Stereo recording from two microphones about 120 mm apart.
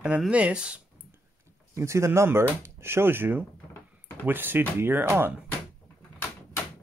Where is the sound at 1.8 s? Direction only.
25° right (ahead or behind).